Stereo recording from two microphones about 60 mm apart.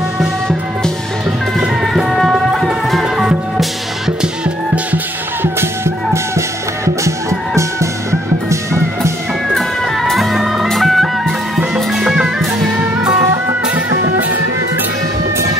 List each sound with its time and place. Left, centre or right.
1.8 s music: centre
4.9 s music: right
7.1 s music: right
9.5 s music: centre